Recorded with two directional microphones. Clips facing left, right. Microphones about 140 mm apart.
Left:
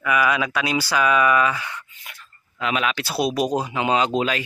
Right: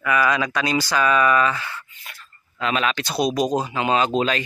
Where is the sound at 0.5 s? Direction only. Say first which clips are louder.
Right 1 dB; 5° left (ahead or behind).